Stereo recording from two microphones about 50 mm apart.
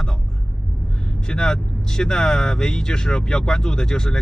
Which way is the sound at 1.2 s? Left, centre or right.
Centre.